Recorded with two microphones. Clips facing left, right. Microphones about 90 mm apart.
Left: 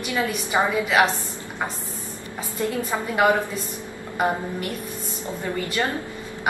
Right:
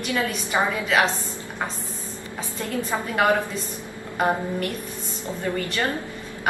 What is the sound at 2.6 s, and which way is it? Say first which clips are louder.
Speech: left 1 dB; 15° left (ahead or behind).